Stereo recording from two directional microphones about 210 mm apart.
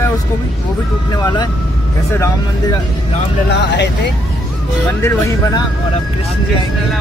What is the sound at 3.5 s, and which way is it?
Speech, 55° left (ahead or behind).